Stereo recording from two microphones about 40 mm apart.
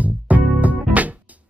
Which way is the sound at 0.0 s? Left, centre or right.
Right.